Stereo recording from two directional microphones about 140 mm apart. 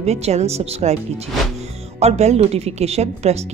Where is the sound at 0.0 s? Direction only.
50° right (ahead or behind).